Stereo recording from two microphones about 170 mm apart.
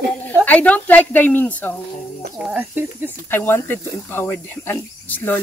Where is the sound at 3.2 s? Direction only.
15° left (ahead or behind).